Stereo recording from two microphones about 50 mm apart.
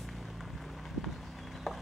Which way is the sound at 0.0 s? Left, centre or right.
Centre.